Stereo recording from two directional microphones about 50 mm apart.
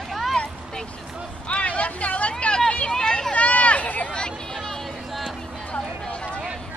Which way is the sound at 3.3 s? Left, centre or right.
Left.